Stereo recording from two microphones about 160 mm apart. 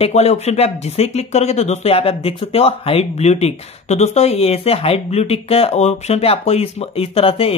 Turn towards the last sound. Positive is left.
turn(degrees=35)  # may be behind; listen again after turning